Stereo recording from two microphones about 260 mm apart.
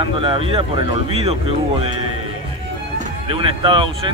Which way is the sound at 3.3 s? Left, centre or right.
Centre.